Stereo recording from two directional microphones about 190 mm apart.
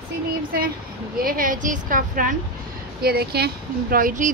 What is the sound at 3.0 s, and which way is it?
Speech, 55° right (ahead or behind).